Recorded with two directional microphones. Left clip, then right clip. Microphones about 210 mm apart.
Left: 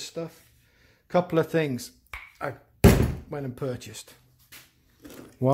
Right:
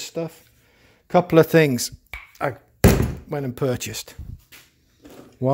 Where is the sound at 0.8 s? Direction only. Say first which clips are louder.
Right 6 dB; 40° right (ahead or behind).